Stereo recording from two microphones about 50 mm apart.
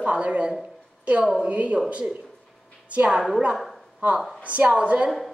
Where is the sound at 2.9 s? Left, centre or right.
Right.